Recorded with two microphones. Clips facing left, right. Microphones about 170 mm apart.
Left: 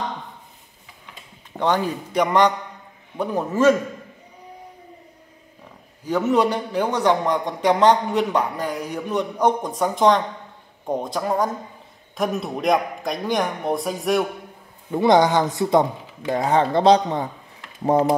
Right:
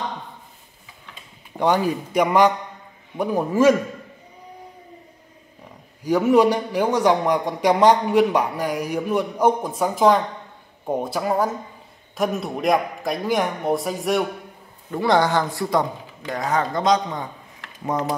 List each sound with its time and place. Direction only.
1.6 s a man's voice: 10° right (ahead or behind)
6.0 s a man's voice: 10° right (ahead or behind)
14.9 s speech: 20° left (ahead or behind)